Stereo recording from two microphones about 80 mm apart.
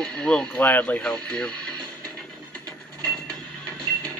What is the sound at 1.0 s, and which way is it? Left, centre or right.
Speech, centre.